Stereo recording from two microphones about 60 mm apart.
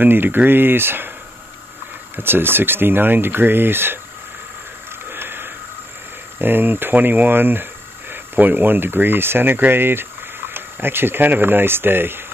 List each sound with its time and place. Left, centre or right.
0.0 s speech: right
2.1 s speech: right
5.1 s a sound: right
6.4 s speech: right